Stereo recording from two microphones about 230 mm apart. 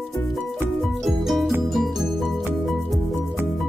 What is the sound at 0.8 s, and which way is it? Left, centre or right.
Music, centre.